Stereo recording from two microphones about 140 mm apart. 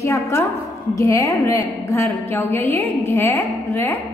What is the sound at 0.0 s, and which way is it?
A woman's voice, 20° left (ahead or behind).